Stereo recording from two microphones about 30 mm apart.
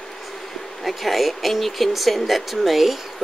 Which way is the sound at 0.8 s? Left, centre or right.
Centre.